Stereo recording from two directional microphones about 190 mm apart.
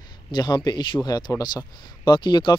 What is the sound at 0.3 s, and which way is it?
A man's voice, 20° left (ahead or behind).